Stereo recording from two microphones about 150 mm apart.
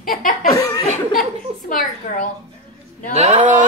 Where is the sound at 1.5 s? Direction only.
40° right (ahead or behind).